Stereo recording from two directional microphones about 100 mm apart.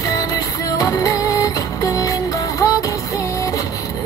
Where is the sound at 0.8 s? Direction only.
35° left (ahead or behind).